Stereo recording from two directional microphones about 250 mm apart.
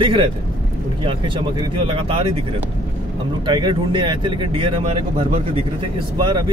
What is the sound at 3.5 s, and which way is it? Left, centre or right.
Speech, centre.